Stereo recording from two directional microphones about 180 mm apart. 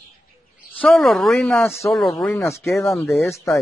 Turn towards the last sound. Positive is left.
turn(degrees=0)  # may be behind; listen again after turning